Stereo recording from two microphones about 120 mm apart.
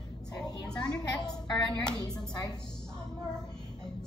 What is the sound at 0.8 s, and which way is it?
A woman's voice, 35° left (ahead or behind).